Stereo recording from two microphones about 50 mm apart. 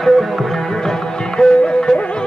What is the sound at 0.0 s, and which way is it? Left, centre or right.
Music, centre.